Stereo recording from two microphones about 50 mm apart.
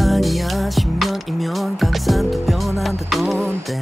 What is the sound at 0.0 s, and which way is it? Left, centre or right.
Music, centre.